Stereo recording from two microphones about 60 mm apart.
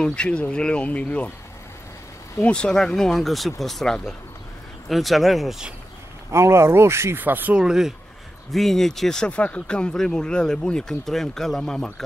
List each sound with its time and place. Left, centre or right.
0.0 s speech: centre
2.4 s speech: centre
6.3 s speech: right
7.2 s speech: right
7.5 s speech: centre
8.5 s speech: centre